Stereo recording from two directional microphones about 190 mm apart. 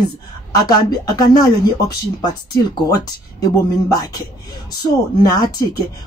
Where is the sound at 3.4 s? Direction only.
20° left (ahead or behind).